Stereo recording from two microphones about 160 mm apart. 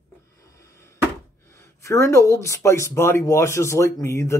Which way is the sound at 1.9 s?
20° left (ahead or behind).